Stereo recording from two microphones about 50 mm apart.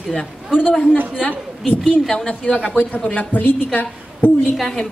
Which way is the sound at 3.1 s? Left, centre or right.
Left.